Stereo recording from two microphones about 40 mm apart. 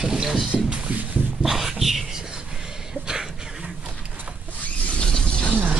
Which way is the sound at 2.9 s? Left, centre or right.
Centre.